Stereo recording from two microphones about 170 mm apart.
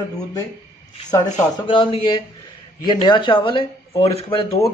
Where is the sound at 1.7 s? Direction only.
30° left (ahead or behind).